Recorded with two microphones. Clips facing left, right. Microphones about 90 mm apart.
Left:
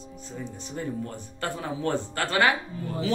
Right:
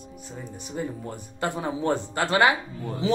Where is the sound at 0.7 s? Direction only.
15° right (ahead or behind).